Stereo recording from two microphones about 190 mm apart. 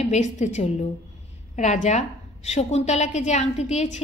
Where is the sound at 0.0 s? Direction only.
40° left (ahead or behind).